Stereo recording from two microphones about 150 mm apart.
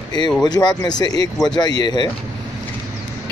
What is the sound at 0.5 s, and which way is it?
Speech, 25° left (ahead or behind).